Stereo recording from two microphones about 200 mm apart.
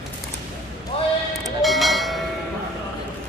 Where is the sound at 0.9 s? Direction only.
30° left (ahead or behind).